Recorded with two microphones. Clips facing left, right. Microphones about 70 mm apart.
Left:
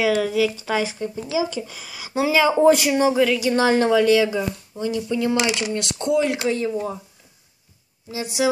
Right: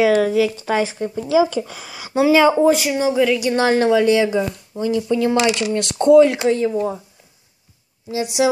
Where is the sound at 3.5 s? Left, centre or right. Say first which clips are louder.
Right 2 dB; right.